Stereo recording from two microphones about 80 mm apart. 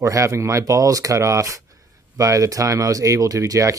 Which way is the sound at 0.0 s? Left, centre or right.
Right.